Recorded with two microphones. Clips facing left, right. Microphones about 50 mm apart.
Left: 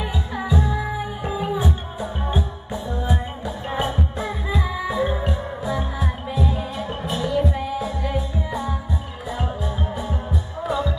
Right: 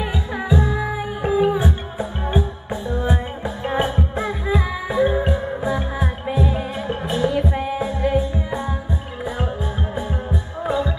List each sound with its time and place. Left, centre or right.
0.0 s music: right
10.6 s music: right